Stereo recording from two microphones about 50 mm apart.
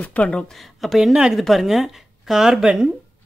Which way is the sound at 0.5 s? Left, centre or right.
Centre.